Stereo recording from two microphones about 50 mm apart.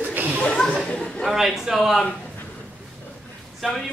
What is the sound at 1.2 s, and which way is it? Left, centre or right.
Speech, centre.